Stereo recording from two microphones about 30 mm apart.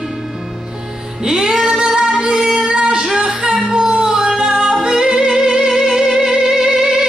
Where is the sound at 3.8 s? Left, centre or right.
Right.